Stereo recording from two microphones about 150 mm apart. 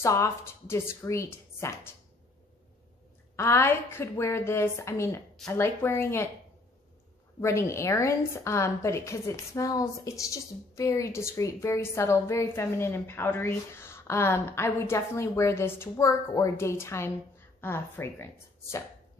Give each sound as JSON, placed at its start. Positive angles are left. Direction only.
{"t": 0.0, "sound": "a woman's voice", "side_deg": 20}
{"t": 3.3, "sound": "a woman's voice", "side_deg": 15}
{"t": 7.3, "sound": "a woman's voice", "side_deg": 20}